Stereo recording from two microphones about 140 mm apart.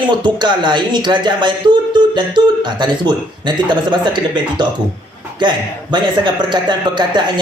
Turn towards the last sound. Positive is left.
turn(degrees=-30)  # may be behind; listen again after turning